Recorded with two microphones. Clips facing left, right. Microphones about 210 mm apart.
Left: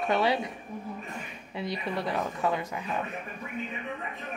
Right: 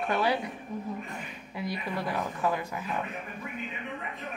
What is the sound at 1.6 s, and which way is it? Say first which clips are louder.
Speech: left 1 dB; 25° left (ahead or behind).